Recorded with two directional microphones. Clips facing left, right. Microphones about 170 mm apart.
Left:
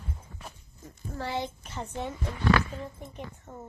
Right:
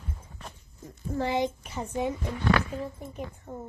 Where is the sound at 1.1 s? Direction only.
20° right (ahead or behind).